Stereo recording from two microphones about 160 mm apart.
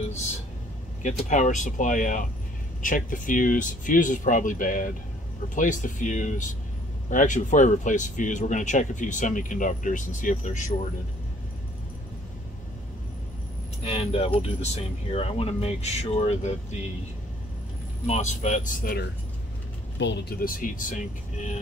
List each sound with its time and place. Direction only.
1.0 s speech: 50° left (ahead or behind)
13.8 s speech: 40° left (ahead or behind)
18.0 s speech: 45° left (ahead or behind); by 19.0 s 60° left (ahead or behind)
20.0 s speech: 90° left; by 21.0 s 60° left (ahead or behind)